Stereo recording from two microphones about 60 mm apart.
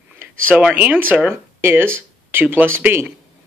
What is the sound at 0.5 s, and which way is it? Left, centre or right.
Speech, right.